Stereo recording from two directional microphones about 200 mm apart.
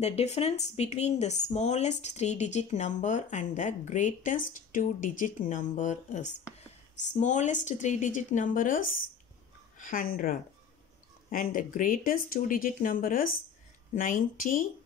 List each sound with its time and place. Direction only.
0.0 s speech: 30° left (ahead or behind)